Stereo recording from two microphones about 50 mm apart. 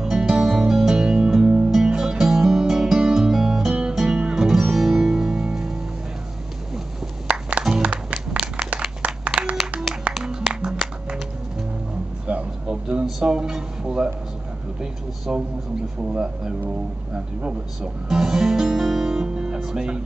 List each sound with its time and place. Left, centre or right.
0.0 s music: centre
1.4 s music: right
1.7 s music: centre
7.2 s music: right
8.3 s a sound: centre
9.0 s clapping: right
10.1 s music: right
12.3 s a sound: right
13.2 s a sound: centre
16.0 s speech: centre
18.0 s music: centre
19.6 s speech: centre